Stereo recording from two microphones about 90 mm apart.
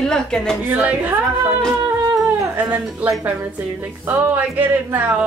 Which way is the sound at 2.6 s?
20° right (ahead or behind).